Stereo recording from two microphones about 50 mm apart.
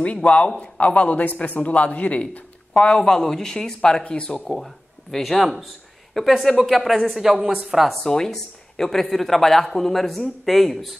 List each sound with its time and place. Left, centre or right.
0.0 s speech: left
3.0 s speech: centre
5.1 s speech: centre